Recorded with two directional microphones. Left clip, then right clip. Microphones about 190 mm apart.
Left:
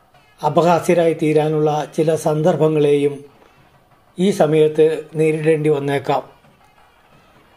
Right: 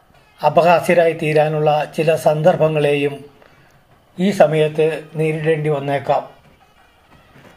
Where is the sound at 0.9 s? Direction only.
40° left (ahead or behind).